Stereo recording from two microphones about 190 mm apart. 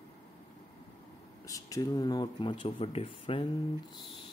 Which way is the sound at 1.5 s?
20° left (ahead or behind).